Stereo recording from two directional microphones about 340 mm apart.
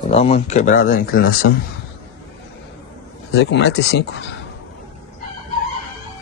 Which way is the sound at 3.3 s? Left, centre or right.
Left.